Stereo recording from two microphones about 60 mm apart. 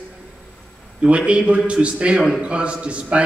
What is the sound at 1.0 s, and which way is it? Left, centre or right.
A man's voice, centre.